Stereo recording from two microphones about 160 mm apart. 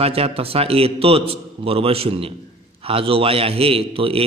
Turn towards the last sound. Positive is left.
turn(degrees=-35)  # may be behind; listen again after turning